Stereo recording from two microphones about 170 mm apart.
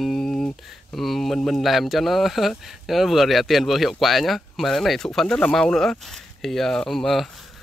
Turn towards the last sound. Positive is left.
turn(degrees=0)  # may be behind; listen again after turning